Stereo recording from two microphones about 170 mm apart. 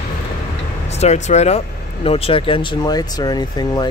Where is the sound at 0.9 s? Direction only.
40° left (ahead or behind); by 3.8 s 25° left (ahead or behind).